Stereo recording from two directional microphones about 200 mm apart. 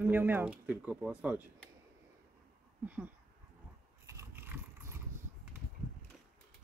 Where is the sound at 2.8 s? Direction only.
10° right (ahead or behind).